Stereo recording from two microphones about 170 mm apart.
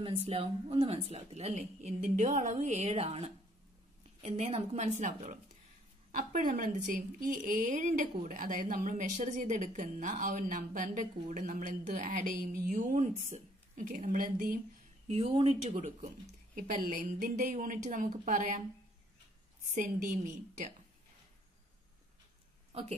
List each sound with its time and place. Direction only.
0.0 s a woman's voice: 35° right (ahead or behind); by 14.6 s 55° right (ahead or behind)
15.0 s a woman's voice: 35° right (ahead or behind)
19.7 s a woman's voice: 45° right (ahead or behind)
22.7 s speech: 35° right (ahead or behind)